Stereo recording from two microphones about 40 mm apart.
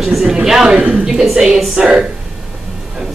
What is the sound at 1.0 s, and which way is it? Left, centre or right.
Speech, centre.